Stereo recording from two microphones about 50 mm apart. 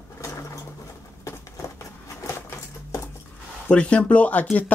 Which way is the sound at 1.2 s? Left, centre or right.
Left.